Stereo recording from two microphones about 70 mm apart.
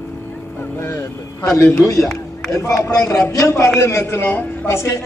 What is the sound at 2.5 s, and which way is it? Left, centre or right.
Speech, left.